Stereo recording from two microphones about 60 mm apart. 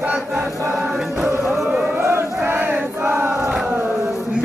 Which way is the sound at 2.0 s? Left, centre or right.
Right.